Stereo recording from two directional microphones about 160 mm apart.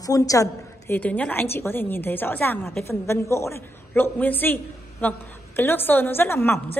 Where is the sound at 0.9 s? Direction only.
10° left (ahead or behind).